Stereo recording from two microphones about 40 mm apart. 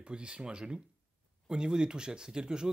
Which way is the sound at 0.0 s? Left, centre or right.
Right.